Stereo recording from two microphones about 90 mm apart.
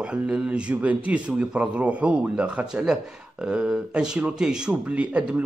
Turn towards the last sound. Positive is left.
turn(degrees=-15)  # may be behind; listen again after turning